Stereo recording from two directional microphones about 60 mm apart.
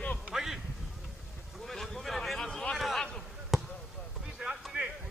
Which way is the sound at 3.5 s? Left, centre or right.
Centre.